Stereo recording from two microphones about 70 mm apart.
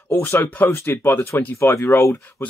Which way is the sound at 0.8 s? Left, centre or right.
Left.